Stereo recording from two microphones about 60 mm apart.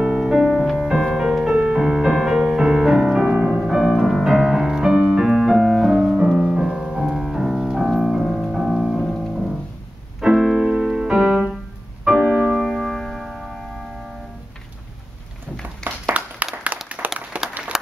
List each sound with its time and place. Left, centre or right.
0.0 s music: centre
3.8 s music: centre
4.2 s music: centre
7.9 s piano: centre
10.2 s keyboard: centre
12.5 s music: centre
16.1 s a sound: right
16.9 s applause: right